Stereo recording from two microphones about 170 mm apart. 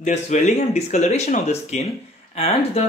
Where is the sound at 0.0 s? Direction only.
45° left (ahead or behind).